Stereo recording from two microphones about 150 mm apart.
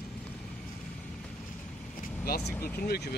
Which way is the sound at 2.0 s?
90° left.